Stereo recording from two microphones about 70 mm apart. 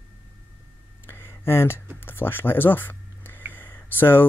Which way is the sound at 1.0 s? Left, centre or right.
Left.